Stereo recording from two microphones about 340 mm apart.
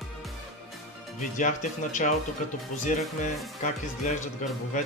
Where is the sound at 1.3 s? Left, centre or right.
Left.